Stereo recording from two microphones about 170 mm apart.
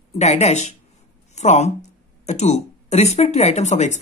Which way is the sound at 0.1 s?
40° left (ahead or behind).